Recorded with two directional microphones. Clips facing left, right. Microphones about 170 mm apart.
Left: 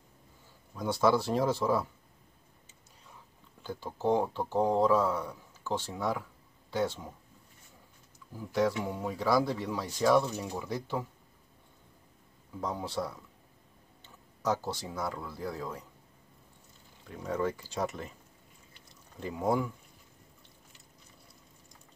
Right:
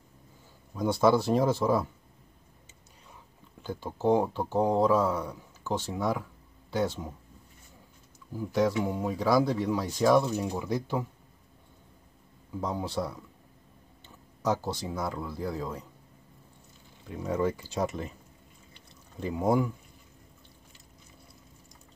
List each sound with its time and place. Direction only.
0.7 s speech: 20° right (ahead or behind)
3.6 s speech: 15° right (ahead or behind)
8.5 s speech: 15° right (ahead or behind)
12.5 s speech: 15° right (ahead or behind)
14.4 s speech: 15° right (ahead or behind)
17.2 s speech: 15° right (ahead or behind)
19.1 s speech: 15° right (ahead or behind)